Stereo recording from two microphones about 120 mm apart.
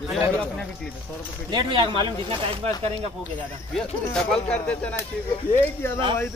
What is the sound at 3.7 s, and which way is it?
Speech, 5° left (ahead or behind).